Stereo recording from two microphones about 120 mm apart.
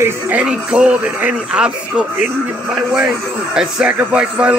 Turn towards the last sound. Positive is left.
turn(degrees=-10)  # may be behind; listen again after turning